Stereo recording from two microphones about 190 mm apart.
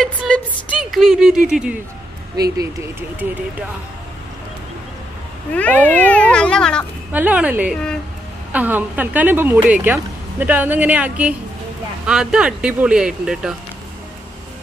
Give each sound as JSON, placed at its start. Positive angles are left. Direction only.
{"t": 0.0, "sound": "a sound", "side_deg": 0}
{"t": 2.3, "sound": "speech", "side_deg": -20}
{"t": 5.5, "sound": "speech", "side_deg": 10}
{"t": 7.1, "sound": "a woman's voice", "side_deg": -10}